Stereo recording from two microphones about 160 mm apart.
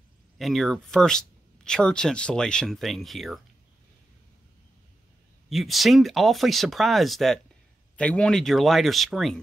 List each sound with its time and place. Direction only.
0.4 s speech: centre (ahead or behind)
5.5 s speech: centre (ahead or behind)